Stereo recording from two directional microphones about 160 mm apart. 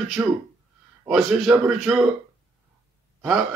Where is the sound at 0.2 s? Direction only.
20° right (ahead or behind).